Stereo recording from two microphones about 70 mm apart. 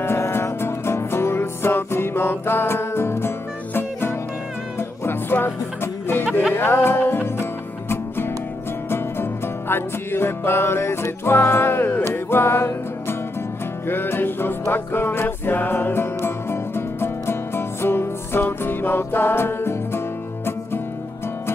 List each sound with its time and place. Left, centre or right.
0.0 s music: left
13.8 s music: left